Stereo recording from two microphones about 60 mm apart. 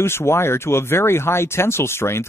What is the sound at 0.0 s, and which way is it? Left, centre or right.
Speech, left.